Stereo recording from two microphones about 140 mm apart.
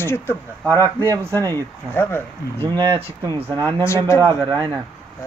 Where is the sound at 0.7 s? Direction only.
20° right (ahead or behind).